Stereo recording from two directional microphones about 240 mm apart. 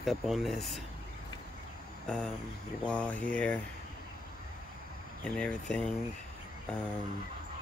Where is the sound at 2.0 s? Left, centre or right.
Centre.